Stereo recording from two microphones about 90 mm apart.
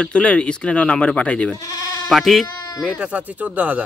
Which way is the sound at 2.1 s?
Centre (ahead or behind).